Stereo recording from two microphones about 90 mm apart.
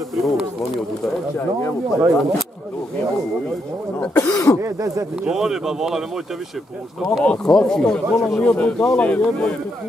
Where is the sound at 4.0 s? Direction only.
15° left (ahead or behind).